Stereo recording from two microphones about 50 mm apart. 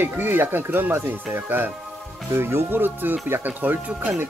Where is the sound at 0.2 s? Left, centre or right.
Right.